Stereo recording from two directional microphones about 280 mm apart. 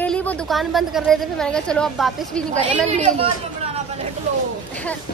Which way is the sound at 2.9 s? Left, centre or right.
Right.